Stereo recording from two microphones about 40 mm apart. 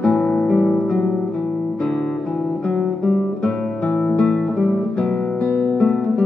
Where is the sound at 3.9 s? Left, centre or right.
Centre.